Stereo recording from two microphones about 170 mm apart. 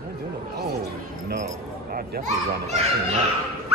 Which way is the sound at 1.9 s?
55° right (ahead or behind).